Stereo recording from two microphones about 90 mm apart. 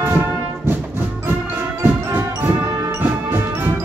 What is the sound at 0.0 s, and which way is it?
Music, 25° right (ahead or behind).